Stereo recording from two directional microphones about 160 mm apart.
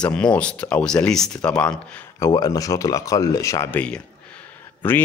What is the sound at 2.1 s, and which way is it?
Speech, 20° left (ahead or behind).